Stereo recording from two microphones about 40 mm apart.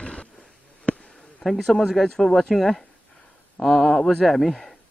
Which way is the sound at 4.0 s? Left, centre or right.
Centre.